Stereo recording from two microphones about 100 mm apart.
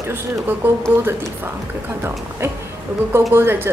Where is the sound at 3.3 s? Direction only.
20° right (ahead or behind).